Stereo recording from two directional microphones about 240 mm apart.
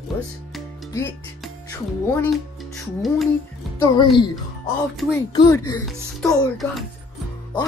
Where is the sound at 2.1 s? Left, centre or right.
Centre.